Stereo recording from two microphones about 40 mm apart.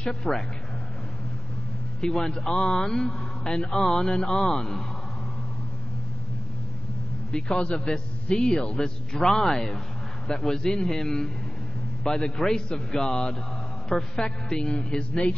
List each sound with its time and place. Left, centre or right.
0.0 s speech: left
2.0 s a man's voice: centre
7.3 s a man's voice: left